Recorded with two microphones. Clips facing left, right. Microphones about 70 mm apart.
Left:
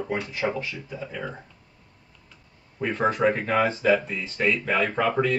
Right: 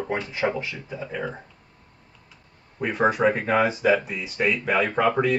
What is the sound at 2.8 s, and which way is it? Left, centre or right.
Speech, centre.